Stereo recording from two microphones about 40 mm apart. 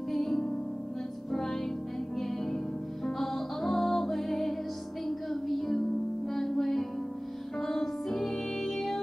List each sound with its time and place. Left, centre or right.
0.1 s music: centre
3.2 s music: centre